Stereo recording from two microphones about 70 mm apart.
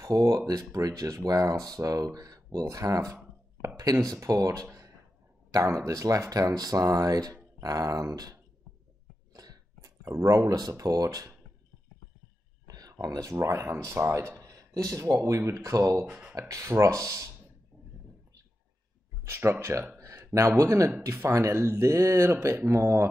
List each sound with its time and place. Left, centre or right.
0.0 s speech: right
9.3 s a sound: right
10.7 s speech: right
12.6 s speech: right
14.4 s speech: right
19.2 s speech: right
20.0 s a sound: right
20.3 s speech: right